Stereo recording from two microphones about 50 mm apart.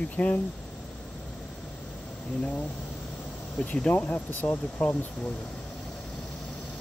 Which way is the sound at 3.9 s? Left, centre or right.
Left.